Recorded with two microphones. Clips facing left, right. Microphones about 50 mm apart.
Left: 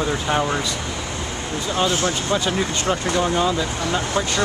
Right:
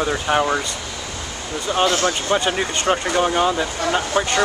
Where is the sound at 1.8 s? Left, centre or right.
Right.